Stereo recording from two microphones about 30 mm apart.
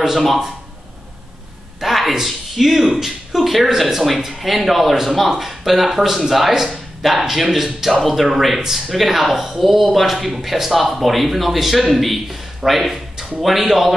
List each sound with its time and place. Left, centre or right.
1.8 s speech: centre
12.6 s speech: centre
13.4 s speech: centre